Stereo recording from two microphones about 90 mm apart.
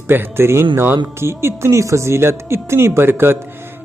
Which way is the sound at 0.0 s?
25° right (ahead or behind).